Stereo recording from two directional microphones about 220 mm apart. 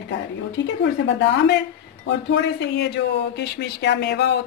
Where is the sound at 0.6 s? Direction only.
55° left (ahead or behind).